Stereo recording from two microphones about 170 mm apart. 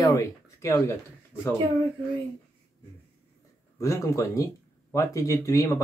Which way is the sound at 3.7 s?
20° left (ahead or behind).